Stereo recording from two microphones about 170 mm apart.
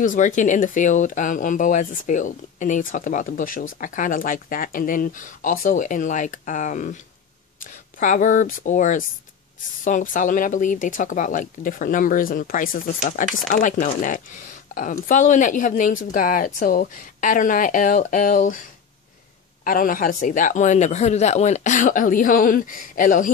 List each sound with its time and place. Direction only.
0.0 s speech: 50° left (ahead or behind)